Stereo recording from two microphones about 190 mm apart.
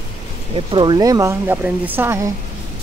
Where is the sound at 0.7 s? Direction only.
25° right (ahead or behind).